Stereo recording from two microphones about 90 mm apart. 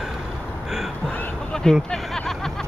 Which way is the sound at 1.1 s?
15° left (ahead or behind).